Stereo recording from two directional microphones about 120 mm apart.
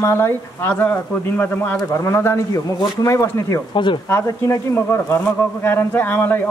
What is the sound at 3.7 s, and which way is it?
Speech, 45° left (ahead or behind).